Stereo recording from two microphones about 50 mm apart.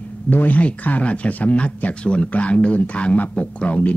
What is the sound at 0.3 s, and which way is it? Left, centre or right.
Speech, left.